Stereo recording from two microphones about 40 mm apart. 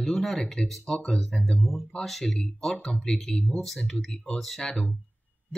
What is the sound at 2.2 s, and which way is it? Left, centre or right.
Speech, left.